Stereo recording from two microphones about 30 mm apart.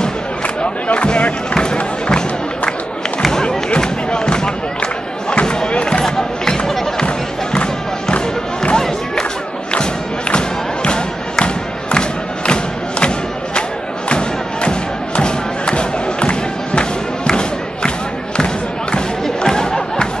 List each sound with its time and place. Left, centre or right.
0.9 s music: left
3.8 s a sound: left
5.3 s a sound: left
6.0 s music: centre
7.5 s crowd: left
8.7 s music: centre
10.3 s thump: left
13.6 s thump: left
17.3 s a sound: left
19.2 s chatter: left